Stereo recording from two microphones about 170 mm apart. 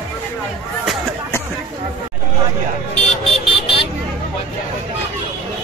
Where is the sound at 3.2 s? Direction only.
30° left (ahead or behind).